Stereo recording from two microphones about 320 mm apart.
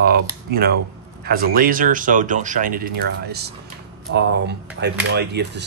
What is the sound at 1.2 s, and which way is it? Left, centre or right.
Speech, right.